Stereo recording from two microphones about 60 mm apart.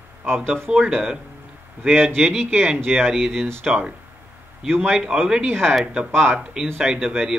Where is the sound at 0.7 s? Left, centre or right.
Centre.